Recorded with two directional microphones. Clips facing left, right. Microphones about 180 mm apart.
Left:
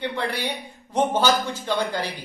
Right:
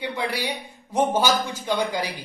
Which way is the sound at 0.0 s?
10° right (ahead or behind).